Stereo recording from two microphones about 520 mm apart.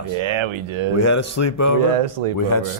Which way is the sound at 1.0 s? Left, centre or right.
Left.